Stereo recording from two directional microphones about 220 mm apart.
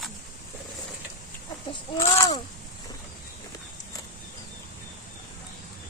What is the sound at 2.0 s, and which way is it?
Speech, 20° left (ahead or behind).